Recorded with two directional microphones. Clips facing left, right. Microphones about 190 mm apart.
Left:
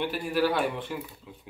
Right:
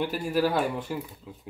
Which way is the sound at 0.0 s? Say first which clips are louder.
Right 1 dB; 40° right (ahead or behind).